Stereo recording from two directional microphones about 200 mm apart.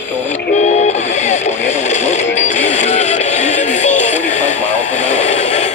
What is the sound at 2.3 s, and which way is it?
Music, 35° left (ahead or behind).